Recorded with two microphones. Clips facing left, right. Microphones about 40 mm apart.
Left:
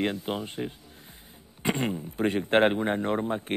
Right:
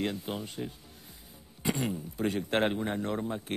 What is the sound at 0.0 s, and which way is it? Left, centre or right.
Speech, left.